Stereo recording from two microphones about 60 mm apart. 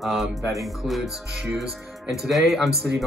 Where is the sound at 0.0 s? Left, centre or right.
Centre.